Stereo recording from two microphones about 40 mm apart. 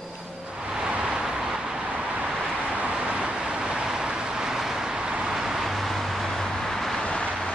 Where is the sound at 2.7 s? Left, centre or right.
Right; by 7.0 s centre.